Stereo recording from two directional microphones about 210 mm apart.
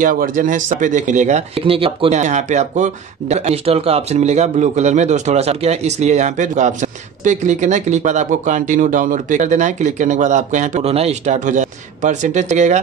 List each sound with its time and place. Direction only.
0.0 s speech: 40° right (ahead or behind)